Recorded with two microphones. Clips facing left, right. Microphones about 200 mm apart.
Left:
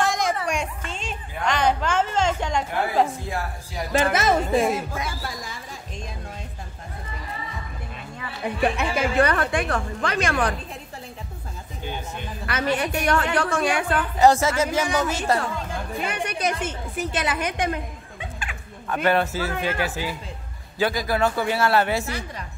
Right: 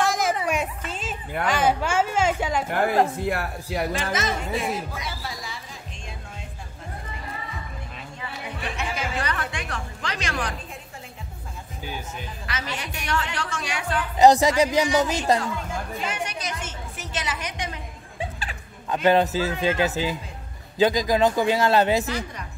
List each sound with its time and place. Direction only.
0.0 s music: 5° right (ahead or behind)
1.4 s a sound: 5° right (ahead or behind)
2.7 s speech: 55° right (ahead or behind)
3.9 s speech: 55° left (ahead or behind)
8.2 s a woman's voice: 55° left (ahead or behind)
12.4 s a woman's voice: 55° left (ahead or behind)
14.1 s speech: 15° right (ahead or behind)
16.0 s a woman's voice: 55° left (ahead or behind)
18.9 s a man's voice: 20° right (ahead or behind)